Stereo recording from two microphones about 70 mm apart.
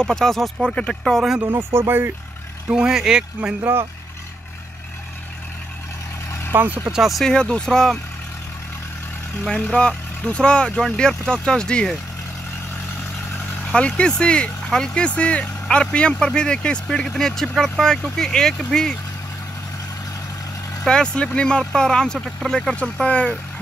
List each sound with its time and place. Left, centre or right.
0.0 s speech: centre
1.5 s speech: right
2.7 s speech: centre
6.5 s speech: right
6.9 s speech: centre
7.2 s speech: centre
9.5 s speech: centre
13.7 s speech: centre
20.8 s speech: centre